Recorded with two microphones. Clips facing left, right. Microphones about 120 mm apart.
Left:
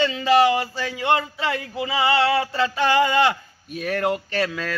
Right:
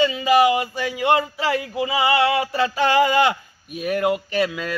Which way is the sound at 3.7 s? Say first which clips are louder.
Right 2 dB; 10° right (ahead or behind).